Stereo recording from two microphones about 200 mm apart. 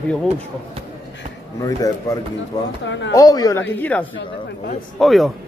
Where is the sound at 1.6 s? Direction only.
15° left (ahead or behind).